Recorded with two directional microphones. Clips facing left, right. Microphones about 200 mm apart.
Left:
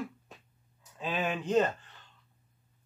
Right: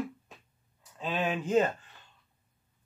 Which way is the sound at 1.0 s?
Centre (ahead or behind).